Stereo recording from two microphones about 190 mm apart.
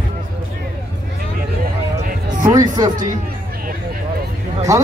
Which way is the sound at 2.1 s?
40° right (ahead or behind).